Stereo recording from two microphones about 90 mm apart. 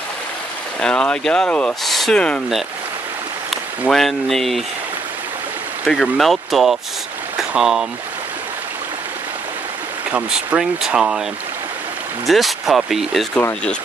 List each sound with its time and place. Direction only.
0.7 s speech: 10° left (ahead or behind)
1.9 s speech: centre (ahead or behind)
3.9 s speech: 5° left (ahead or behind)
5.9 s speech: centre (ahead or behind)
7.3 s a sound: 5° right (ahead or behind)
10.1 s speech: 10° right (ahead or behind)
12.3 s speech: centre (ahead or behind)
13.3 s speech: 25° left (ahead or behind)